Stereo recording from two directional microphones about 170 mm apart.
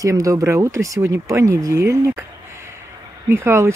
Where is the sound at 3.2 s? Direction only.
15° right (ahead or behind).